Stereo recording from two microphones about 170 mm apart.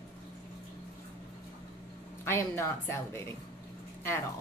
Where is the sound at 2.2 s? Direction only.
15° left (ahead or behind).